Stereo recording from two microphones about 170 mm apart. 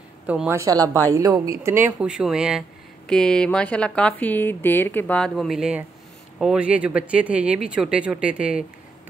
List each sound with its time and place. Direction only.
0.3 s speech: 10° right (ahead or behind)